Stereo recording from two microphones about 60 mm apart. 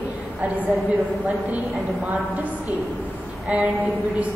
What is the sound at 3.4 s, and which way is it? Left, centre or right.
Speech, right.